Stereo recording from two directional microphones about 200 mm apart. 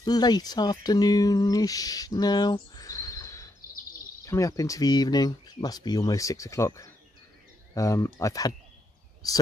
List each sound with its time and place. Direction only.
0.0 s speech: 20° left (ahead or behind)